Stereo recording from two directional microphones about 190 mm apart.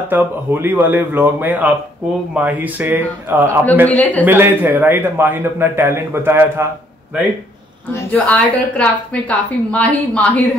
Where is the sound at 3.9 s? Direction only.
5° left (ahead or behind).